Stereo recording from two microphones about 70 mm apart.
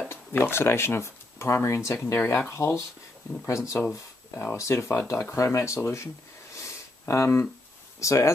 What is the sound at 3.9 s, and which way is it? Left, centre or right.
Speech, left.